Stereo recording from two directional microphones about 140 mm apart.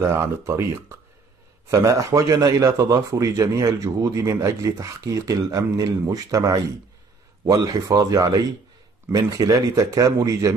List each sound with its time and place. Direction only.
0.0 s speech: 20° right (ahead or behind)